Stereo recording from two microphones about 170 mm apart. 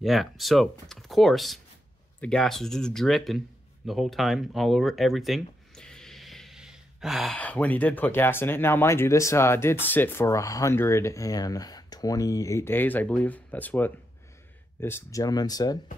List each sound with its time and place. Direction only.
0.0 s a man's voice: centre (ahead or behind); by 15.8 s 20° left (ahead or behind)